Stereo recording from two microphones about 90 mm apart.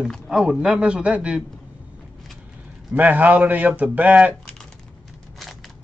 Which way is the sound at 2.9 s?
15° right (ahead or behind).